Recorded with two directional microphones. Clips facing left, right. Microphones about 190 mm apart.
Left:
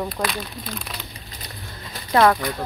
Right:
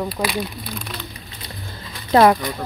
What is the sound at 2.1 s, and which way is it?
Speech, 25° right (ahead or behind).